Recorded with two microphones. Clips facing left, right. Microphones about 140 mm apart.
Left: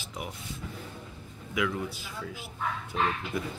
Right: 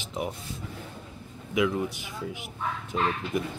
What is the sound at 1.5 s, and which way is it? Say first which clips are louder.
Speech: right 5 dB; 20° right (ahead or behind).